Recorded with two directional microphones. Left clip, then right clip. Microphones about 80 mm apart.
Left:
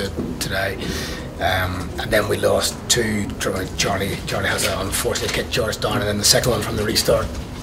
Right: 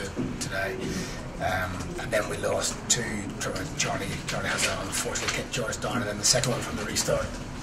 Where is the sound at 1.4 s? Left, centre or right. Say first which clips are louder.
Left 8 dB; right.